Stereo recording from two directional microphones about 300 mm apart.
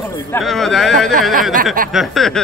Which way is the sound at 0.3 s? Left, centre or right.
Centre.